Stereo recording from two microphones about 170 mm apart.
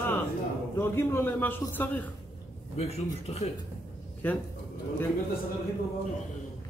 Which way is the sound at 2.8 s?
40° left (ahead or behind).